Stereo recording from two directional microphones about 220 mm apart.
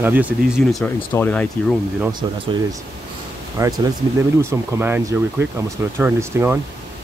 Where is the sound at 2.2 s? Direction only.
20° right (ahead or behind).